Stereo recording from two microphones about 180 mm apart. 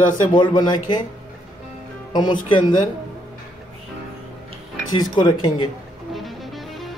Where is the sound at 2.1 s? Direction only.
25° left (ahead or behind).